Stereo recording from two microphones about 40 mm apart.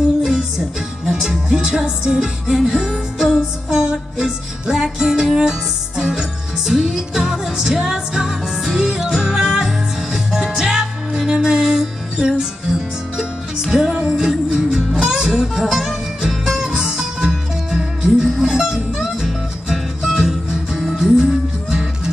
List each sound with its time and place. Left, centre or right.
0.2 s music: centre
15.4 s music: centre
16.5 s music: centre